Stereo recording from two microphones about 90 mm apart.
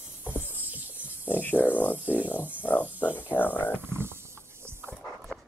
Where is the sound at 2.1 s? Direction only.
15° right (ahead or behind).